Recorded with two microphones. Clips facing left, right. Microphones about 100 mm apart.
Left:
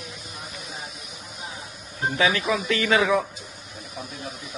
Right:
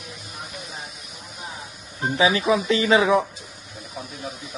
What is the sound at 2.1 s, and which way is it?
Speech, 20° right (ahead or behind).